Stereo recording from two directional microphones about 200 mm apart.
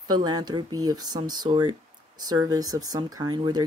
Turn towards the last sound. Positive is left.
turn(degrees=-20)  # may be behind; listen again after turning